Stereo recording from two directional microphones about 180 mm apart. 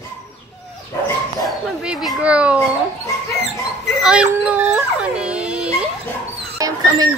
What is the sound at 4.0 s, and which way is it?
Dog, 5° right (ahead or behind).